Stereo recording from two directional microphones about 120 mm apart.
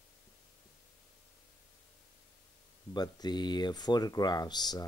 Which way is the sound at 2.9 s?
35° left (ahead or behind).